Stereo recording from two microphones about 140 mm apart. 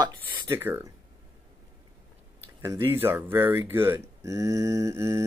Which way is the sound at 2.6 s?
15° right (ahead or behind).